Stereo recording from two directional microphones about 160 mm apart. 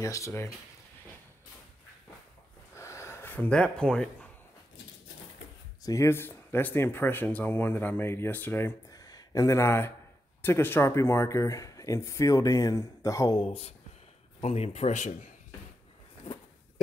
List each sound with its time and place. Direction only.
0.0 s speech: 20° left (ahead or behind)
2.7 s a sound: 15° left (ahead or behind)
5.8 s speech: 20° left (ahead or behind); by 15.1 s 45° left (ahead or behind)